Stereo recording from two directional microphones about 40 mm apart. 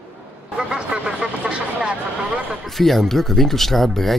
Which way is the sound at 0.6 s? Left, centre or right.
Right.